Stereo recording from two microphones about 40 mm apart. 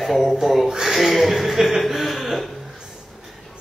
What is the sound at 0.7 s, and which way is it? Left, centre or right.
Speech, centre.